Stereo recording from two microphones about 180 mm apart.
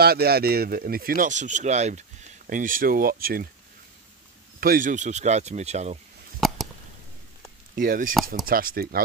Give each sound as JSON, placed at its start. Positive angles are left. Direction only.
{"t": 0.0, "sound": "speech", "side_deg": -60}
{"t": 4.6, "sound": "speech", "side_deg": -50}
{"t": 6.4, "sound": "a sound", "side_deg": 0}
{"t": 7.7, "sound": "speech", "side_deg": -50}